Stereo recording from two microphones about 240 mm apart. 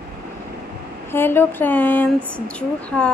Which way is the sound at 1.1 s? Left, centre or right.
Centre.